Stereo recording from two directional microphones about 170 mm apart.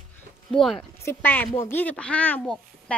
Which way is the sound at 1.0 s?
15° left (ahead or behind).